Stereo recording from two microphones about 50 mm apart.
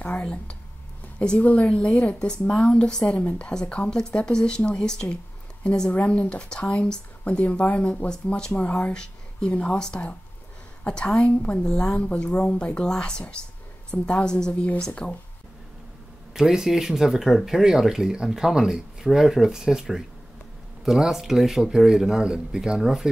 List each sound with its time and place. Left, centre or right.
0.2 s speech: centre
5.1 s a sound: left
6.0 s speech: left
11.6 s speech: centre
16.3 s speech: centre